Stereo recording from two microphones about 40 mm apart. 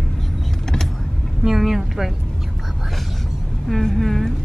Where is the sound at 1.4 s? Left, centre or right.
Centre.